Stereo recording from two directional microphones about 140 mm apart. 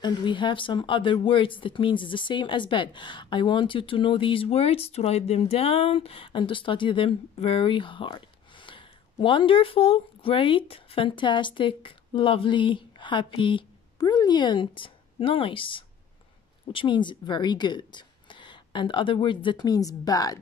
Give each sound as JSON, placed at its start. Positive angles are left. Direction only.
{"t": 0.0, "sound": "speech", "side_deg": 35}